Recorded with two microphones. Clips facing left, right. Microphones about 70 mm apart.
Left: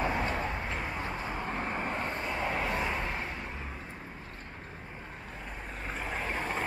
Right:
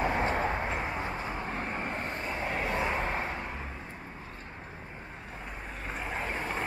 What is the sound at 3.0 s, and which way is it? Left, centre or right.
Vehicle, right.